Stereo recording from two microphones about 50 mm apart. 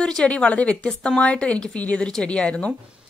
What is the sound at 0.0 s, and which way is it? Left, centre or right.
A woman's voice, centre.